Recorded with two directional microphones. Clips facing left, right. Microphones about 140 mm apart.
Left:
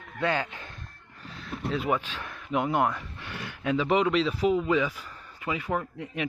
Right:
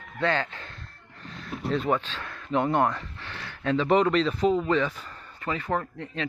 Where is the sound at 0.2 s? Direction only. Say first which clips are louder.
Right 1 dB; 10° left (ahead or behind).